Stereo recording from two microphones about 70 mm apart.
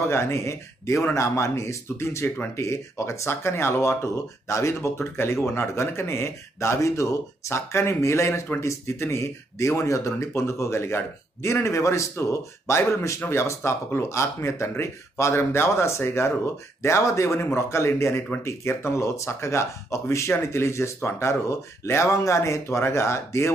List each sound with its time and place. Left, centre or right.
0.1 s speech: left